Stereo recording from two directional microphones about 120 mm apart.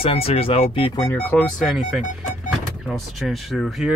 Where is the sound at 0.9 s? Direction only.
20° left (ahead or behind).